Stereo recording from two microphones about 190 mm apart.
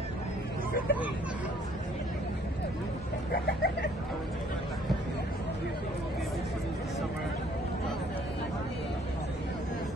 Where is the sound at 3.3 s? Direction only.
55° left (ahead or behind).